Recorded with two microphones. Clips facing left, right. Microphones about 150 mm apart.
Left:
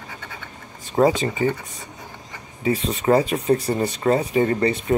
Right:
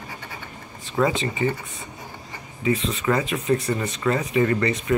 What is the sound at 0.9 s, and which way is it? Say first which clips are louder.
Speech: left 4 dB; 40° left (ahead or behind).